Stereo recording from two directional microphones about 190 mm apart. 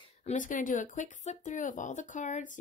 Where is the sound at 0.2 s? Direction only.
40° left (ahead or behind).